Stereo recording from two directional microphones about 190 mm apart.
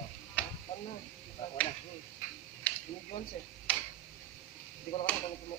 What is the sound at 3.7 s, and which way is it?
Tick-tock, 10° left (ahead or behind).